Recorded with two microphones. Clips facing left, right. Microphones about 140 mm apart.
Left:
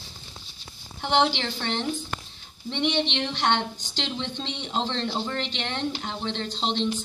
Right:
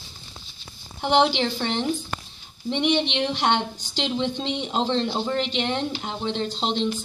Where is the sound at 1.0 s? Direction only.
15° right (ahead or behind).